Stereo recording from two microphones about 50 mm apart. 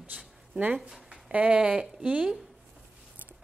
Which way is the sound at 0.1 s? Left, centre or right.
Right.